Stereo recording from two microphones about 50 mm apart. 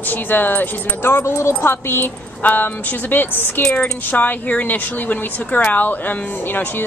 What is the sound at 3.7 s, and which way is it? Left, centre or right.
Speech, left.